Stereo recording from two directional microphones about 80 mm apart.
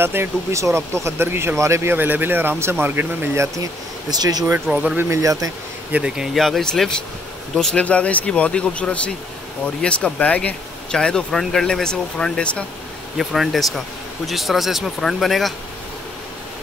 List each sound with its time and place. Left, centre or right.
0.0 s speech: right
4.1 s speech: right
4.6 s speech: centre
5.2 s speech: right
5.9 s speech: centre
6.3 s speech: centre
13.2 s speech: centre